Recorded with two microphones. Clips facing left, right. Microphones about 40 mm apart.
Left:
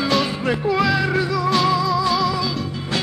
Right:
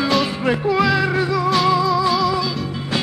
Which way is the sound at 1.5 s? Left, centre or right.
Centre.